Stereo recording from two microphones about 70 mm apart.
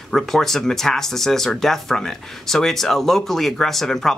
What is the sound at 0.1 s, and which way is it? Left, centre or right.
Speech, centre.